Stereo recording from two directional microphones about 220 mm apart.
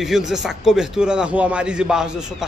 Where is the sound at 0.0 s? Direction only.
Centre (ahead or behind).